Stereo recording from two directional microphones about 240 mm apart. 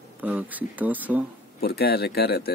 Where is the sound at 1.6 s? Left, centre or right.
Left.